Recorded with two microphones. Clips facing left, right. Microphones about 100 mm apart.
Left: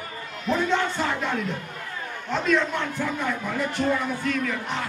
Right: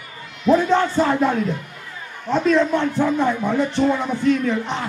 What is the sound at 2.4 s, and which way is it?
Speech, 30° right (ahead or behind).